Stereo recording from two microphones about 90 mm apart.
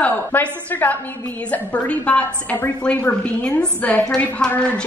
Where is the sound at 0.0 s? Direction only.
15° left (ahead or behind).